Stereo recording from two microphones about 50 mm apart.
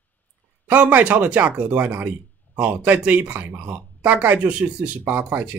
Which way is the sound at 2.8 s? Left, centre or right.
Right.